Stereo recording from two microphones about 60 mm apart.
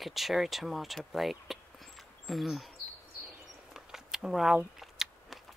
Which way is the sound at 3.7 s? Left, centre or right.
Centre.